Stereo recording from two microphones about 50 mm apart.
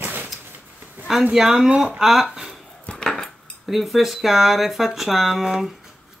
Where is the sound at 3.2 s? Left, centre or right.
Centre.